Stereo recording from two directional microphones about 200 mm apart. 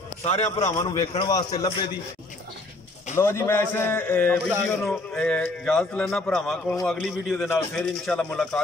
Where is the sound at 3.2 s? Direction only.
10° left (ahead or behind).